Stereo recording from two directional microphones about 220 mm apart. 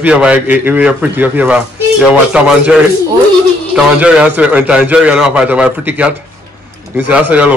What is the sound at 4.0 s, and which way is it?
A man's voice, 5° right (ahead or behind).